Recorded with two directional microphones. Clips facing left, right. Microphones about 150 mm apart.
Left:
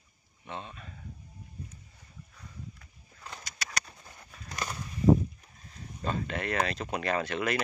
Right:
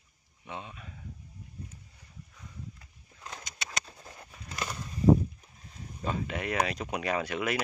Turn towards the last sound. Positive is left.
turn(degrees=-10)  # may be behind; listen again after turning